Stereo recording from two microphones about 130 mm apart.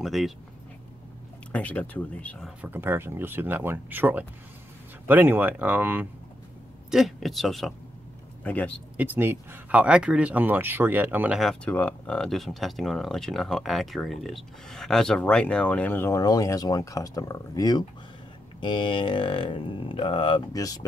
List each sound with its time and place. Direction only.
0.0 s speech: centre (ahead or behind)
1.5 s speech: 10° left (ahead or behind)
2.6 s speech: 15° right (ahead or behind)
6.9 s speech: centre (ahead or behind)
8.5 s speech: 10° left (ahead or behind)
8.9 s speech: 15° right (ahead or behind)
11.3 s speech: centre (ahead or behind); by 16.2 s 15° left (ahead or behind)
16.2 s speech: 25° left (ahead or behind)
20.5 s speech: 25° left (ahead or behind)